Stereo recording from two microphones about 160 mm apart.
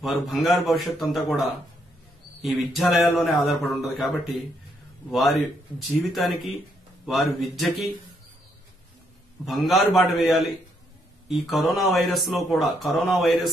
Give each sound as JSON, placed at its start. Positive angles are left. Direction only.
{"t": 0.0, "sound": "speech", "side_deg": 0}
{"t": 5.9, "sound": "speech", "side_deg": 0}
{"t": 9.5, "sound": "speech", "side_deg": 0}